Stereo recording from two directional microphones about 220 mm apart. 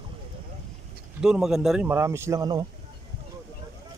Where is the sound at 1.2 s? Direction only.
Centre (ahead or behind).